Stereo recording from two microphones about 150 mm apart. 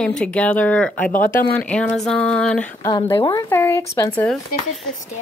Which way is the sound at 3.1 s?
30° left (ahead or behind).